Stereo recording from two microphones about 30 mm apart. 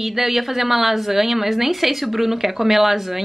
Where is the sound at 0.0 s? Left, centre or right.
Centre.